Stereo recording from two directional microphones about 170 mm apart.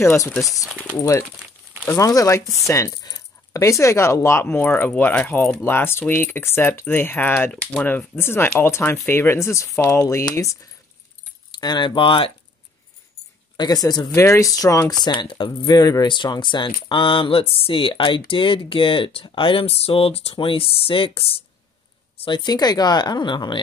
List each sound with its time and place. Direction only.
0.0 s speech: 15° left (ahead or behind)
13.6 s speech: 25° left (ahead or behind)